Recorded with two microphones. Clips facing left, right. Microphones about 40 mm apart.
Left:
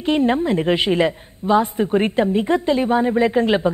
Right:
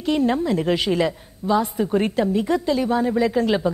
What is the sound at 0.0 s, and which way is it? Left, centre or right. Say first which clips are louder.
A woman's voice: left 2 dB; left.